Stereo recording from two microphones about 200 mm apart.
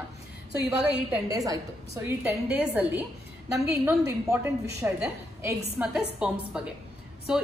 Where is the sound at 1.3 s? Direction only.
15° right (ahead or behind).